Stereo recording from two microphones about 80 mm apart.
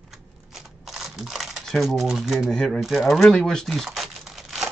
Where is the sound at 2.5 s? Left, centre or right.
Centre.